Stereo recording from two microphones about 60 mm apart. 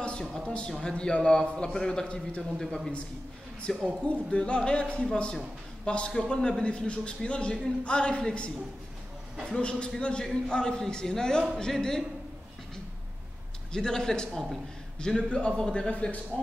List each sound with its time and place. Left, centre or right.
0.5 s a man's voice: centre
2.6 s a man's voice: centre
4.0 s a man's voice: centre
9.5 s a man's voice: centre
13.7 s a man's voice: centre